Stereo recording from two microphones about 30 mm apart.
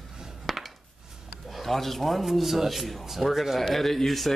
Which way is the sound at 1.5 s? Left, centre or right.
Centre.